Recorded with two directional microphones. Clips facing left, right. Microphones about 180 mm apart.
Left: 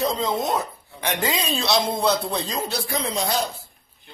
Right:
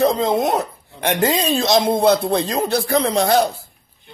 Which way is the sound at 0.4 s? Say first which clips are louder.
Right 5 dB; 60° right (ahead or behind).